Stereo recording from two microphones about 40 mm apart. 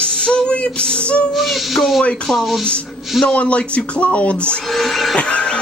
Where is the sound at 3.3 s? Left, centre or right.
Left.